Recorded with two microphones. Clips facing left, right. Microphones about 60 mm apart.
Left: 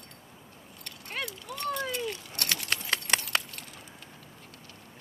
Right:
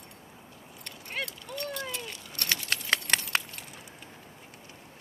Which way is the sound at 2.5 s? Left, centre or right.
Right.